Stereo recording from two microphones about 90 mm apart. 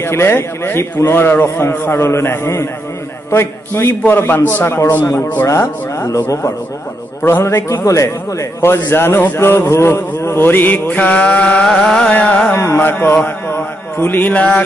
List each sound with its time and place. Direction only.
0.0 s a man's voice: 30° left (ahead or behind)
12.5 s a man's voice: 25° left (ahead or behind)